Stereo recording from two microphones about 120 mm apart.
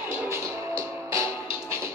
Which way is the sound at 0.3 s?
25° right (ahead or behind).